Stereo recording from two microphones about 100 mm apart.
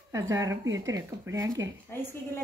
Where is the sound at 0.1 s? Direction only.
30° right (ahead or behind).